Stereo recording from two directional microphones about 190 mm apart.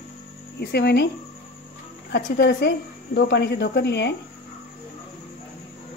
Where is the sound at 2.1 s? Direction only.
60° left (ahead or behind).